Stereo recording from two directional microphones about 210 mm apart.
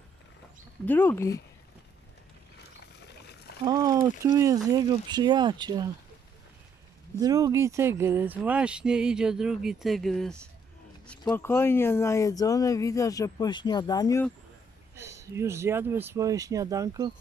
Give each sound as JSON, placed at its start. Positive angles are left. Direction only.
{"t": 0.8, "sound": "speech", "side_deg": 10}
{"t": 3.6, "sound": "speech", "side_deg": -20}
{"t": 7.2, "sound": "speech", "side_deg": -15}
{"t": 15.0, "sound": "speech", "side_deg": -15}